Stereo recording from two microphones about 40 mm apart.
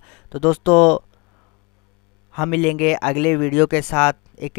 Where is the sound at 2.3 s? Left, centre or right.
Centre.